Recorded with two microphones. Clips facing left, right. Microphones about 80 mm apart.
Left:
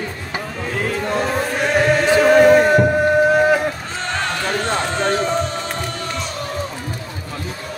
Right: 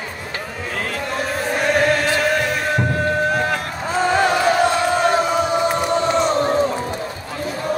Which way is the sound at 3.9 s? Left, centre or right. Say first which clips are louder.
Right 7 dB; centre.